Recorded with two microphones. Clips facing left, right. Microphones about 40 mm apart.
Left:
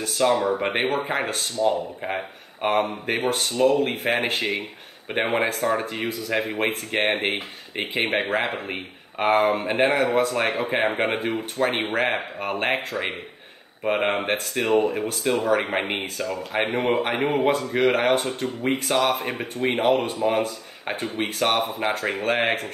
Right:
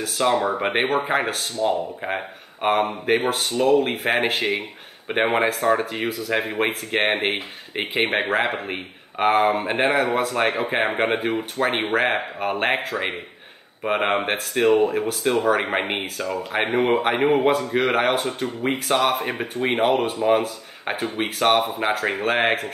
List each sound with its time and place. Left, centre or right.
0.0 s speech: centre
12.6 s speech: right
13.8 s speech: centre
21.0 s speech: centre